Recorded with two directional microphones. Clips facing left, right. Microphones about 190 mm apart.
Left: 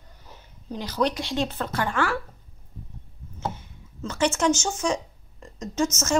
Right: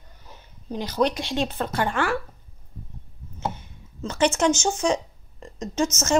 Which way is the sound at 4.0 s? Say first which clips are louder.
Right 2 dB; 20° right (ahead or behind).